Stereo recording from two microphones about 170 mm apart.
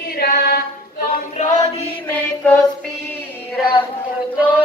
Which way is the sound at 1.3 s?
45° left (ahead or behind).